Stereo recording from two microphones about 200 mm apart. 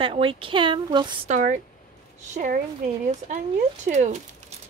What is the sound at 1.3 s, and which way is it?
Speech, 40° right (ahead or behind).